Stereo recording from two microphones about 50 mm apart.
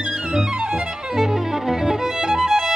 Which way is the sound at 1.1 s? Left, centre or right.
Centre.